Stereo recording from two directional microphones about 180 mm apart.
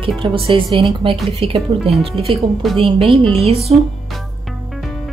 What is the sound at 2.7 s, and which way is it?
Speech, 30° right (ahead or behind).